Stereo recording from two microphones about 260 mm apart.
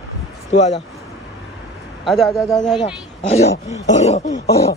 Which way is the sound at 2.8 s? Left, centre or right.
Centre.